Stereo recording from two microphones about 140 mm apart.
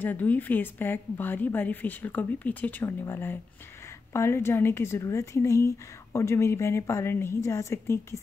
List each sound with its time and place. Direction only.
0.0 s a woman's voice: 15° left (ahead or behind)